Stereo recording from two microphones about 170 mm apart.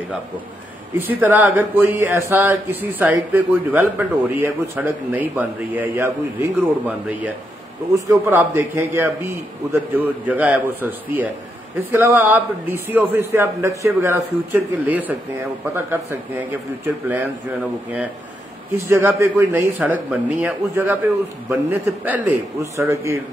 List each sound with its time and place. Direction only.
0.9 s a man's voice: 10° right (ahead or behind)
7.9 s a man's voice: 15° right (ahead or behind)
18.9 s a man's voice: 15° right (ahead or behind)